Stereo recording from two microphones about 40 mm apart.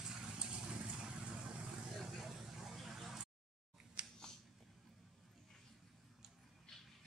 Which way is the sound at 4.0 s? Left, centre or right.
Right.